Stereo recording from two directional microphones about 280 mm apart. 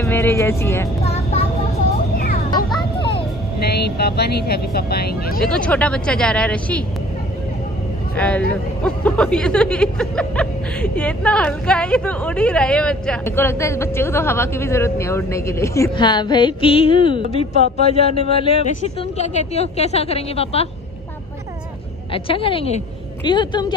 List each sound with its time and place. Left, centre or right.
0.0 s speech: centre
1.0 s vehicle: left
2.1 s a sound: left
2.8 s vehicle: centre
3.6 s speech: left
5.5 s speech: centre
8.2 s speech: centre
8.8 s music: centre
17.7 s a man's voice: left
22.1 s a man's voice: centre
23.2 s music: centre